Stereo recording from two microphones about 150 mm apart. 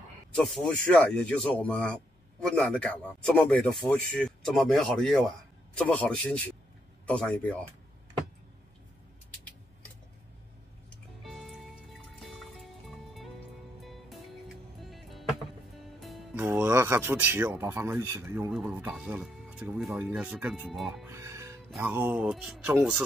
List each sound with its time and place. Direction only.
0.4 s speech: 5° left (ahead or behind)
11.2 s music: centre (ahead or behind)
16.3 s speech: 15° right (ahead or behind)
21.1 s music: 20° right (ahead or behind)
21.6 s music: centre (ahead or behind)
21.9 s speech: 10° right (ahead or behind)